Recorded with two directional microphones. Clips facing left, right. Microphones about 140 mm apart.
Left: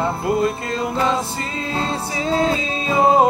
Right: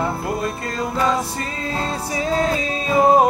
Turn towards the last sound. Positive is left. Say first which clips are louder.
# even
turn(degrees=25)  # may be behind; listen again after turning